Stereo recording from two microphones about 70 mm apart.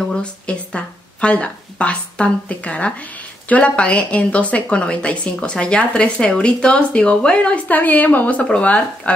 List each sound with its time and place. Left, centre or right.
0.0 s speech: centre